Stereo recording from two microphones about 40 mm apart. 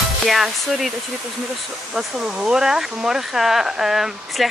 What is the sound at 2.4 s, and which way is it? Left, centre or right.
Speech, centre.